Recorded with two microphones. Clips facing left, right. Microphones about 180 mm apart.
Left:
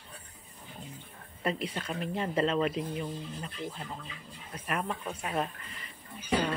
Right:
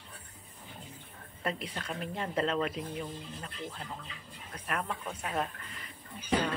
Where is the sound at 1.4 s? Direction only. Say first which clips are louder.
Left 3 dB; 5° left (ahead or behind).